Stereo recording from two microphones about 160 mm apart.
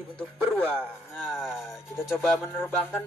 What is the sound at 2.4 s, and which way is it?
Music, 15° left (ahead or behind).